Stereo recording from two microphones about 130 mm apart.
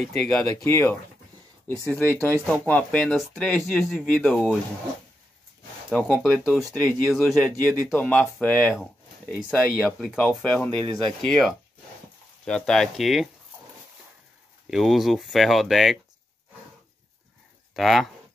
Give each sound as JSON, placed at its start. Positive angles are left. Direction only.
{"t": 0.0, "sound": "speech", "side_deg": 5}
{"t": 0.7, "sound": "speech", "side_deg": 20}
{"t": 5.9, "sound": "speech", "side_deg": 10}
{"t": 8.0, "sound": "speech", "side_deg": 10}
{"t": 9.4, "sound": "speech", "side_deg": 0}
{"t": 14.7, "sound": "speech", "side_deg": 0}
{"t": 17.7, "sound": "speech", "side_deg": 0}